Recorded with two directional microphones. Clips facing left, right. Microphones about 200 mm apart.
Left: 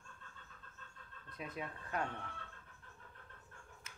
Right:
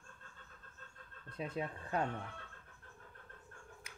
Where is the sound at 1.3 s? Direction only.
30° right (ahead or behind).